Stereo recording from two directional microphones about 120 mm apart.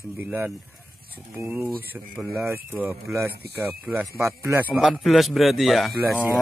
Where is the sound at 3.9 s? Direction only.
5° right (ahead or behind).